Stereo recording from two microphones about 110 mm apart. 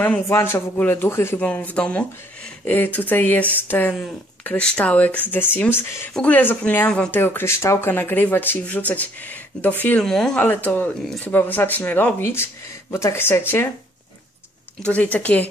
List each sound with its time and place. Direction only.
0.0 s speech: 20° left (ahead or behind)
7.2 s speech: 20° left (ahead or behind)
14.8 s speech: 15° left (ahead or behind)